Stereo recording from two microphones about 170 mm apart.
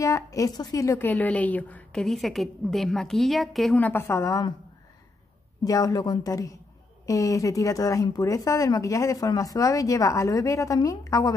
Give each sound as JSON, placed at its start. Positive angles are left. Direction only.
{"t": 0.0, "sound": "a woman's voice", "side_deg": 20}
{"t": 5.6, "sound": "speech", "side_deg": 20}